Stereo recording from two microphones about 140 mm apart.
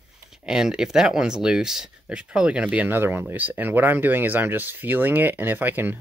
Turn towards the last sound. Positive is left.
turn(degrees=-15)  # may be behind; listen again after turning